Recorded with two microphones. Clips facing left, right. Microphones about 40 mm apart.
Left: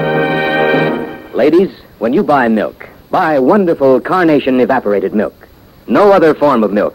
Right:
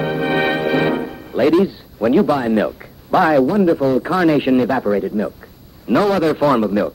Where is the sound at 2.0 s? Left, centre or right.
Centre.